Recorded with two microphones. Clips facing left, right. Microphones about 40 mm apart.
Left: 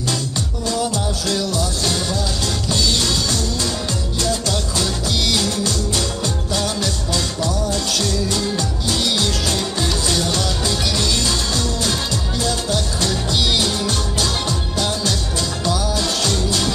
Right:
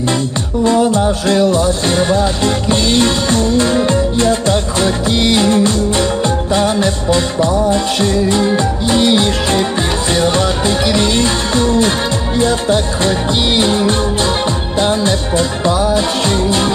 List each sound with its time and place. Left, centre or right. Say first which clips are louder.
0.7 s music: right 10 dB; right